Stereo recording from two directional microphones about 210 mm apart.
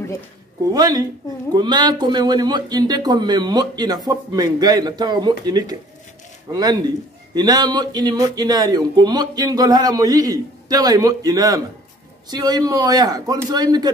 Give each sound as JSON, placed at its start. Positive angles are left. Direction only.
{"t": 0.7, "sound": "a man's voice", "side_deg": -20}